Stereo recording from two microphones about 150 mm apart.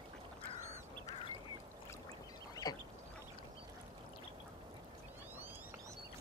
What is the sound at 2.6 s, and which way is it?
Duck, 25° left (ahead or behind).